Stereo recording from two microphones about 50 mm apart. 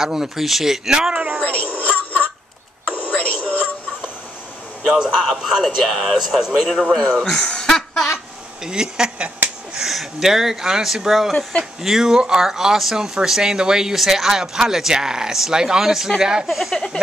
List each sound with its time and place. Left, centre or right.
0.0 s speech: centre
0.9 s speech: centre
1.6 s speech: left
3.0 s radio: left
3.4 s music: left
4.8 s a man's voice: centre
7.2 s speech: centre
8.6 s speech: centre
16.4 s a man's voice: centre
16.7 s a sound: centre